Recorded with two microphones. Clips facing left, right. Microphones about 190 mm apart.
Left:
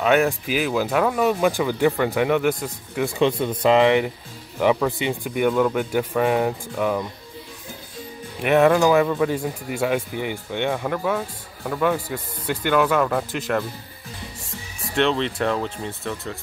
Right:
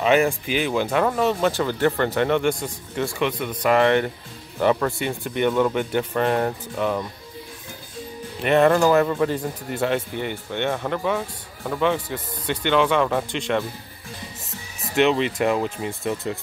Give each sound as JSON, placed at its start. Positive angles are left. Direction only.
{"t": 0.0, "sound": "speech", "side_deg": 0}
{"t": 3.1, "sound": "speech", "side_deg": 25}
{"t": 3.8, "sound": "speech", "side_deg": 15}
{"t": 4.9, "sound": "speech", "side_deg": 15}
{"t": 5.3, "sound": "speech", "side_deg": 5}
{"t": 8.4, "sound": "speech", "side_deg": 10}
{"t": 15.0, "sound": "speech", "side_deg": -5}